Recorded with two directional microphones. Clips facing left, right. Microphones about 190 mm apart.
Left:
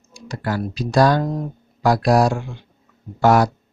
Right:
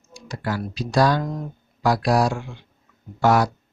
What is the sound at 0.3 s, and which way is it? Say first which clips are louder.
Speech: left 3 dB; 45° left (ahead or behind).